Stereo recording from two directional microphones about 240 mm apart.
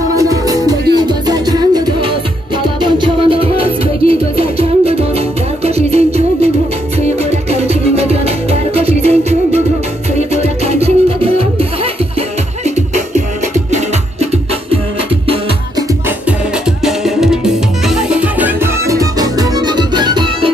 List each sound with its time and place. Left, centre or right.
0.1 s music: centre
16.8 s music: centre